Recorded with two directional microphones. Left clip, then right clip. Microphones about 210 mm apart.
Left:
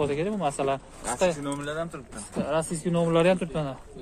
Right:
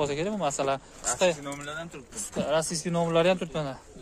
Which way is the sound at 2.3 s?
25° right (ahead or behind).